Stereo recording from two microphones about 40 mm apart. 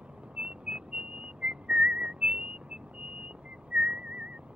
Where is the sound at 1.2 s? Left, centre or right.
Right.